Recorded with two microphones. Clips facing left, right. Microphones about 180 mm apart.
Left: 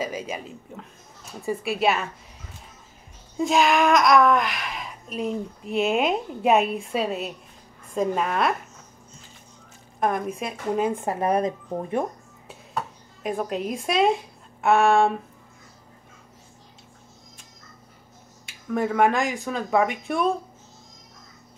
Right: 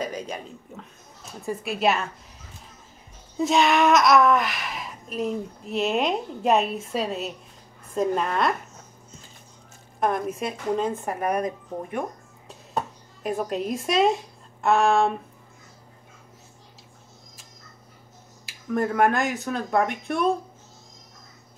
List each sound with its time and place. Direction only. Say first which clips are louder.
0.0 s speech: left 1 dB; 5° left (ahead or behind)
3.3 s speech: even; centre (ahead or behind)
9.9 s speech: even; centre (ahead or behind)
11.1 s speech: left 3 dB; 25° left (ahead or behind)
13.2 s a woman's voice: even; centre (ahead or behind)
18.4 s speech: even; centre (ahead or behind)